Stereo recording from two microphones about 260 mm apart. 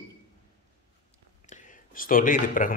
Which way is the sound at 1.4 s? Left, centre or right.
Left.